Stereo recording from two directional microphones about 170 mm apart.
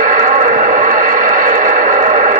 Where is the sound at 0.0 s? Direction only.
50° right (ahead or behind).